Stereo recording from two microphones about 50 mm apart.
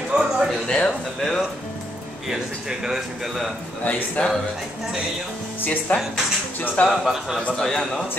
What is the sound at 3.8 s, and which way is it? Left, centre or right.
Speech, left.